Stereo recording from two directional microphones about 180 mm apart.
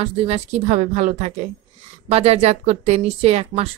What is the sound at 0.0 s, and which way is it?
Speech, 35° right (ahead or behind).